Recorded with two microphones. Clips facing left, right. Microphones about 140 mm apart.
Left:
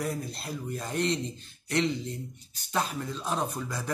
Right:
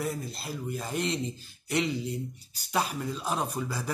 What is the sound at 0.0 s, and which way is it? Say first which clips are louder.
Speech: even; centre (ahead or behind).